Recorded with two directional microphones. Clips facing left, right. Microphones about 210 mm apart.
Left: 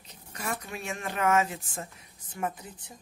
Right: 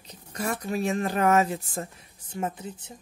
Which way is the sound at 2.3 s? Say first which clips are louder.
Right 3 dB; 25° right (ahead or behind).